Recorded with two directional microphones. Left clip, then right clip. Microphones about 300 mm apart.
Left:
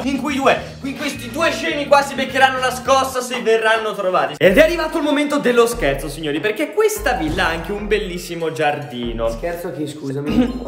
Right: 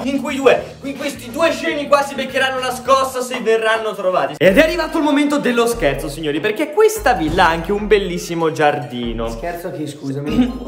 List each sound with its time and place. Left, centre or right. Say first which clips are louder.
0.0 s speech: right 2 dB; centre
10.2 s a man's voice: even; centre